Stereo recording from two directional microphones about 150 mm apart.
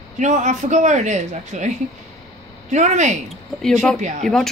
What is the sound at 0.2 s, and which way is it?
A woman's voice, 55° right (ahead or behind).